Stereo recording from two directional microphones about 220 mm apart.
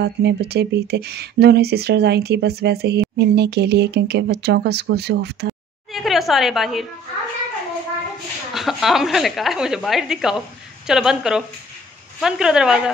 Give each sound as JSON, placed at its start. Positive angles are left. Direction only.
{"t": 0.0, "sound": "speech", "side_deg": -50}
{"t": 5.9, "sound": "a woman's voice", "side_deg": 0}
{"t": 8.5, "sound": "a woman's voice", "side_deg": 0}